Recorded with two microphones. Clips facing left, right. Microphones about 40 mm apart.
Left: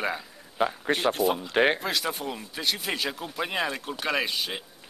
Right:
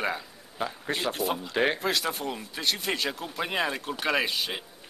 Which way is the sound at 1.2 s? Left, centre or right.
Centre.